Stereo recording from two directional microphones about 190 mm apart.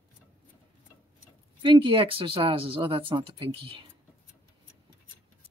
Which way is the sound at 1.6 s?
25° right (ahead or behind).